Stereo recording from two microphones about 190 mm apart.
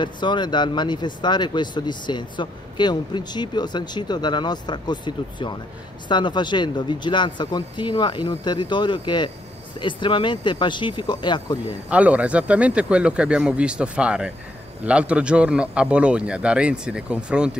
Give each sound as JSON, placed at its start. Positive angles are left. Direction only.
{"t": 0.0, "sound": "speech", "side_deg": 25}
{"t": 11.9, "sound": "speech", "side_deg": -5}